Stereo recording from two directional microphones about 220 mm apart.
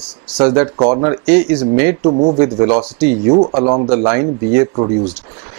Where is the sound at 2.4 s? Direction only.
30° right (ahead or behind).